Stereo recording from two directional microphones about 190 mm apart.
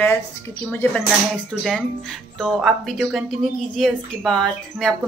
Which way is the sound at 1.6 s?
5° left (ahead or behind).